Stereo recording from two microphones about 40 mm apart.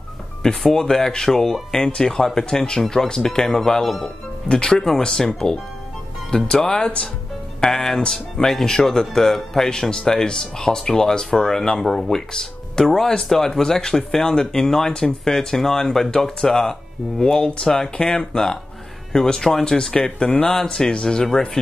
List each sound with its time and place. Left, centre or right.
0.7 s speech: centre
4.5 s speech: left
4.7 s speech: centre
12.1 s speech: centre